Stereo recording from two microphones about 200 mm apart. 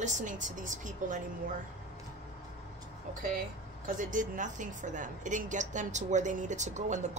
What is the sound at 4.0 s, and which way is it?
A woman's voice, 40° right (ahead or behind).